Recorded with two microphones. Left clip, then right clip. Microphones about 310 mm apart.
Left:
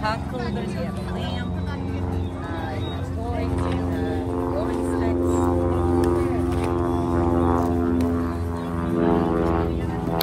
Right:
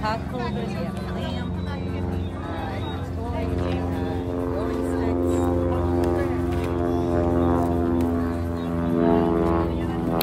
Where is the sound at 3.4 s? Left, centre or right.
Centre.